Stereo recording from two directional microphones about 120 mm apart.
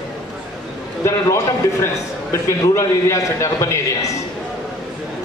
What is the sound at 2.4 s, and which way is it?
A man's voice, 25° left (ahead or behind).